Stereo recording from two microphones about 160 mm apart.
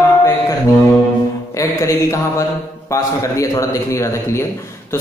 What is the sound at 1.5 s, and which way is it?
A man's voice, 20° left (ahead or behind).